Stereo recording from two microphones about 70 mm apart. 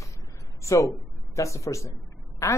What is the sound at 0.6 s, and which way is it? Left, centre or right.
Speech, left.